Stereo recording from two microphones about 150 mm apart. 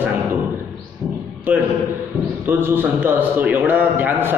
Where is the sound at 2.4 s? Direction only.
15° right (ahead or behind).